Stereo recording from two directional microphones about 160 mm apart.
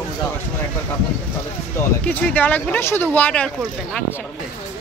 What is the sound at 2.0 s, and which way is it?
Speech, 10° left (ahead or behind).